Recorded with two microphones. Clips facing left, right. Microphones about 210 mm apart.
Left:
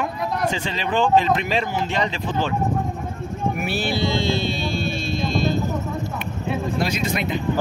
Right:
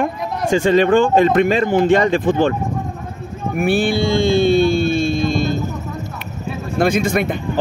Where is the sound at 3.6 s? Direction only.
50° right (ahead or behind).